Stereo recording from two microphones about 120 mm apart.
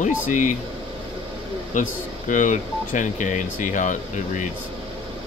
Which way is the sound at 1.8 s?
90° left.